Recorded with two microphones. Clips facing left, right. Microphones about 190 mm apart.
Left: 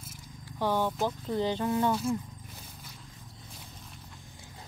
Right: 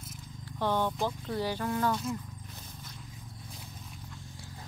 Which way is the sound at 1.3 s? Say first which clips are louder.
Left 3 dB; 20° left (ahead or behind).